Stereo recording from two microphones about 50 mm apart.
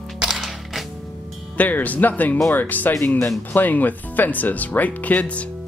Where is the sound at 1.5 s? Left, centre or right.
Left.